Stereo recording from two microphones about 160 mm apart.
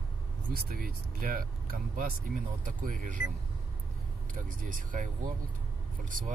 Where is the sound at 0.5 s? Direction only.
65° right (ahead or behind).